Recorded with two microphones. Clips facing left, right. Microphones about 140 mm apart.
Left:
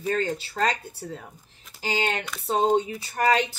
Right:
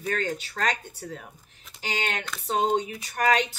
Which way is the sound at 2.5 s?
30° left (ahead or behind).